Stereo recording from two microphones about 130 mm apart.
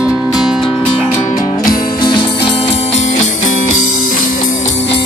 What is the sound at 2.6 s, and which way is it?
Music, 50° left (ahead or behind).